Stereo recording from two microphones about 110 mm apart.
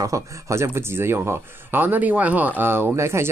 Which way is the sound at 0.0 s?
30° right (ahead or behind).